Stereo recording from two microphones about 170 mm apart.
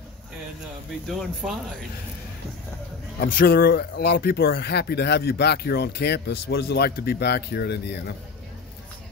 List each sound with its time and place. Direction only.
1.4 s speech: centre (ahead or behind)
3.2 s speech: 60° left (ahead or behind); by 8.0 s 80° left